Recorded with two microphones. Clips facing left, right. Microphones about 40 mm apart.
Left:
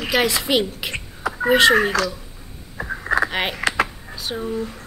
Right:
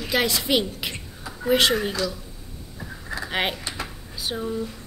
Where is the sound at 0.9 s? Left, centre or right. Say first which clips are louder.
Left 10 dB; left.